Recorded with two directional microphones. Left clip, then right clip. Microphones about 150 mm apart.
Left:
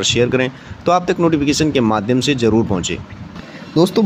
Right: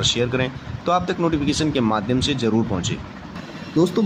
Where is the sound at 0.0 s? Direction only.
40° left (ahead or behind).